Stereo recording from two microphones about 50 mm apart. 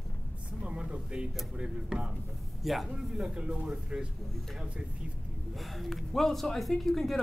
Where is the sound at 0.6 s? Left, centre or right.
Right.